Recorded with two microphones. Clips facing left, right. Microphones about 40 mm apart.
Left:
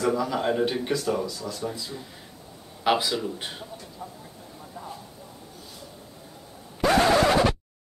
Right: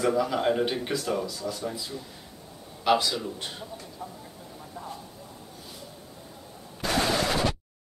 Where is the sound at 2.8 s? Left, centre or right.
Centre.